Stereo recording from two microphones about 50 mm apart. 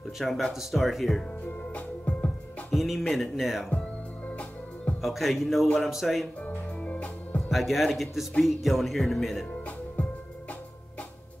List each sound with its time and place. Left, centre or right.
0.2 s speech: centre
1.4 s music: left
2.7 s speech: centre
5.0 s speech: centre
6.4 s music: left
7.5 s speech: centre
10.0 s music: left